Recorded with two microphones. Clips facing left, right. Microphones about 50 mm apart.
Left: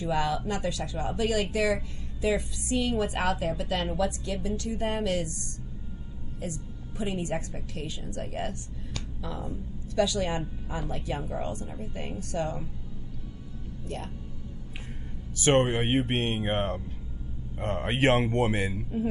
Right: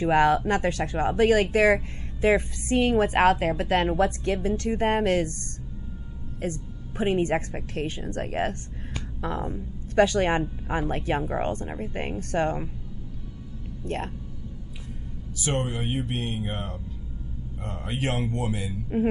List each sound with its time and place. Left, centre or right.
0.0 s a woman's voice: right
6.4 s a woman's voice: right
13.8 s a woman's voice: right
15.3 s a man's voice: left